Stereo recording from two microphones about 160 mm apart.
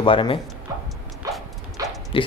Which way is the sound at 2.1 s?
35° left (ahead or behind).